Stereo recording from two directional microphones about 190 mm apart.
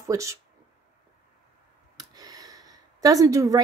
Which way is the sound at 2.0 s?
20° right (ahead or behind).